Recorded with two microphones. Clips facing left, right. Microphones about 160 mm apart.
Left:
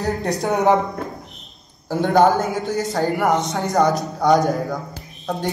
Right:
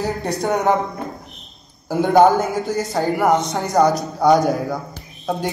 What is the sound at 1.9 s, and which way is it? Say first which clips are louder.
Speech: right 2 dB; 15° right (ahead or behind).